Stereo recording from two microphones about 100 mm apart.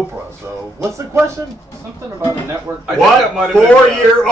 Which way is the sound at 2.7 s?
20° right (ahead or behind).